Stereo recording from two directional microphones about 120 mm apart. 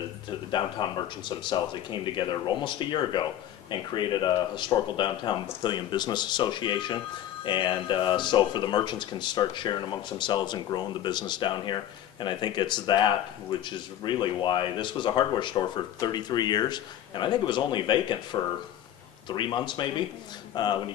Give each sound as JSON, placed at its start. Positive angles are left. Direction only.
{"t": 0.5, "sound": "speech", "side_deg": 40}